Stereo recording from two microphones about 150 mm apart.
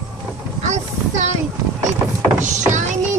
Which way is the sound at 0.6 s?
55° right (ahead or behind).